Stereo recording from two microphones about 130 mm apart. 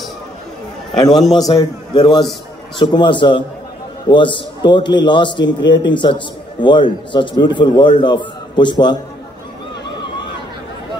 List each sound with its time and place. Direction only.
0.9 s a man's voice: 30° left (ahead or behind)